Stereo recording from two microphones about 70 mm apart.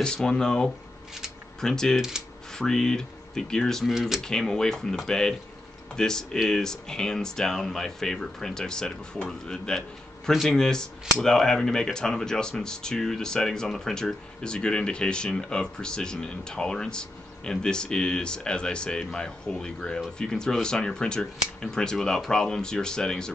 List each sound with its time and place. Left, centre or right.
0.0 s speech: centre